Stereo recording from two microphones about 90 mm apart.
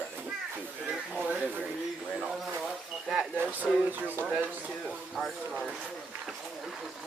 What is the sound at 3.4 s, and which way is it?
Speech, 20° right (ahead or behind).